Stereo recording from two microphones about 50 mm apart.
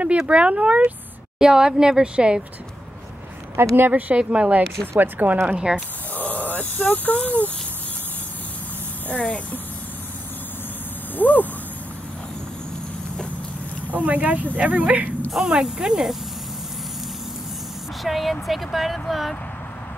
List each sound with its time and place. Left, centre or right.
0.3 s speech: right
1.4 s speech: centre
3.7 s a woman's voice: right
4.1 s speech: right
5.4 s speech: centre
6.1 s a sound: left
6.9 s speech: left
9.1 s speech: left
11.1 s a sound: left
13.8 s speech: right
15.3 s speech: centre
18.0 s speech: centre